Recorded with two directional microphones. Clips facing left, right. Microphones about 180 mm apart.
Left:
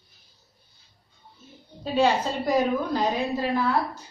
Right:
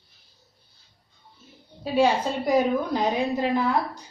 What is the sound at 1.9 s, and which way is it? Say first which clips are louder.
A woman's voice: right 1 dB; 10° right (ahead or behind).